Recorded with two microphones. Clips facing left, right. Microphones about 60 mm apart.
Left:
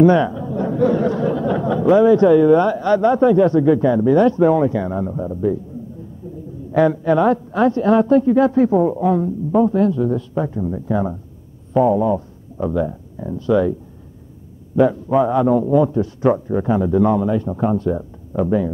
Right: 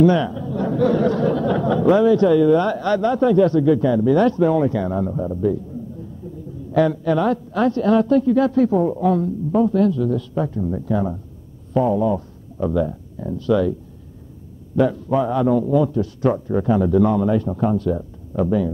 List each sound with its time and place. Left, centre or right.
0.0 s speech: left
2.0 s a man's voice: left
5.1 s a man's voice: centre
6.7 s a man's voice: left
11.7 s a sound: left
12.6 s a man's voice: centre
14.8 s a man's voice: left